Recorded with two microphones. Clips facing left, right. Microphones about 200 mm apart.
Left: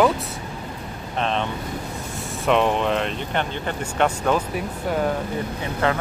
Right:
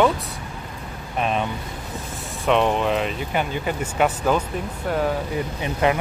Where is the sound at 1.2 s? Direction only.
10° right (ahead or behind).